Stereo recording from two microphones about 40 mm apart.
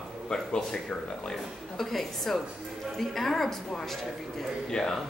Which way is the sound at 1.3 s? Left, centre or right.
Centre.